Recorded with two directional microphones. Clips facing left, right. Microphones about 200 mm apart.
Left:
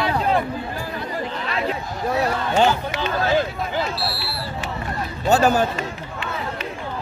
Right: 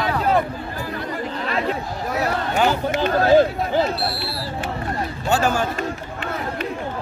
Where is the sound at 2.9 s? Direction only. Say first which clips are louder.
Right 6 dB; 45° right (ahead or behind).